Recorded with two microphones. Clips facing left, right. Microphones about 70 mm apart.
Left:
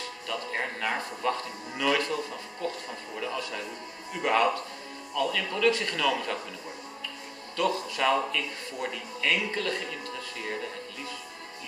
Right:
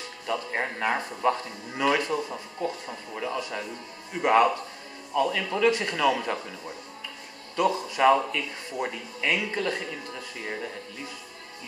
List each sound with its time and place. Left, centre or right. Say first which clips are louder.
0.3 s a man's voice: right 4 dB; centre
7.5 s a man's voice: right 3 dB; centre